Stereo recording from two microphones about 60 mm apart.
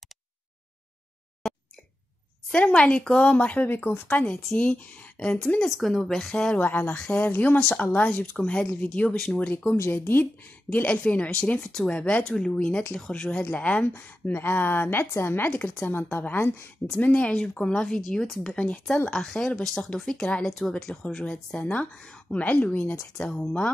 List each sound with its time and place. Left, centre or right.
2.5 s speech: centre
4.1 s speech: centre
5.7 s speech: centre
6.5 s speech: left
6.9 s speech: centre
7.2 s speech: left
15.5 s speech: left
16.3 s speech: left
17.0 s speech: left; by 19.8 s centre
19.8 s speech: centre
20.4 s speech: centre
20.7 s speech: centre
23.1 s speech: centre